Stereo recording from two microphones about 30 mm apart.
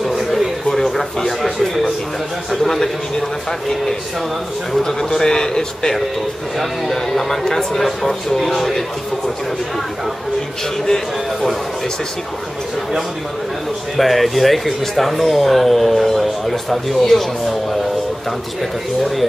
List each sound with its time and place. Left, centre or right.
0.7 s a sound: centre
2.5 s speech: centre
4.8 s a man's voice: centre
6.6 s speech: centre
8.4 s speech: centre
13.9 s speech: centre